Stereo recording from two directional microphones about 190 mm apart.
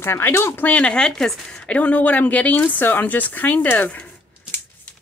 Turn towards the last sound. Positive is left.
turn(degrees=10)  # may be behind; listen again after turning